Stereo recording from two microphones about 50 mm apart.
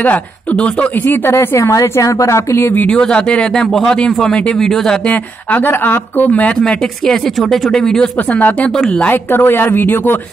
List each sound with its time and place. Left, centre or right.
0.0 s speech: left
0.6 s speech: left
0.9 s a woman's voice: left
1.3 s a woman's voice: left
2.9 s speech: centre
5.0 s a woman's voice: left
6.6 s speech: centre
8.4 s a woman's voice: left